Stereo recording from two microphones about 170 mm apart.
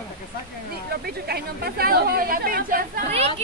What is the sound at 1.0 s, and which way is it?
A woman's voice, 65° right (ahead or behind).